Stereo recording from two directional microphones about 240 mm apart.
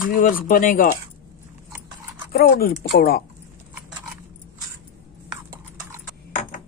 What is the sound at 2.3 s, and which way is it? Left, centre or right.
Speech, left.